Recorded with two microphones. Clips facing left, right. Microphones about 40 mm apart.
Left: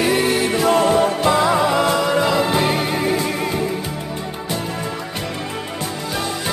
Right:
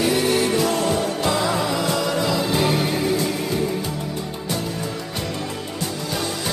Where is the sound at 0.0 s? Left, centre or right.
Left.